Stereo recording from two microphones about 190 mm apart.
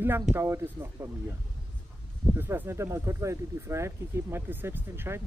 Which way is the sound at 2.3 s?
10° right (ahead or behind).